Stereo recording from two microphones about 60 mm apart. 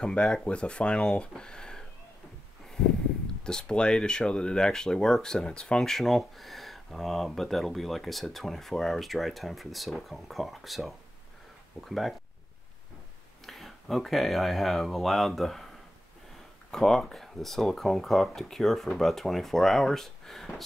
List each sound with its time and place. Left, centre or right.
0.0 s speech: centre
2.8 s a sound: centre
3.4 s speech: centre
13.5 s speech: centre
16.7 s speech: centre